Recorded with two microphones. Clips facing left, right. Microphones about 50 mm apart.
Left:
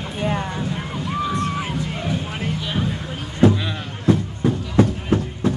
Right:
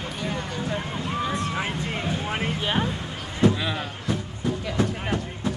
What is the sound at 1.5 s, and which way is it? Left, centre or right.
Music, right.